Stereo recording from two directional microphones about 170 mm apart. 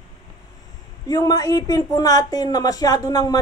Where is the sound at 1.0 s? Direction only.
20° left (ahead or behind).